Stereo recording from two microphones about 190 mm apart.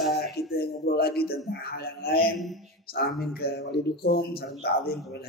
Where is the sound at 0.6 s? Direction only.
55° left (ahead or behind).